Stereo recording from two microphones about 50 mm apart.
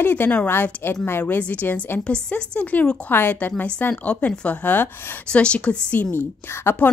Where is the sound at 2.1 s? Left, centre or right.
Left.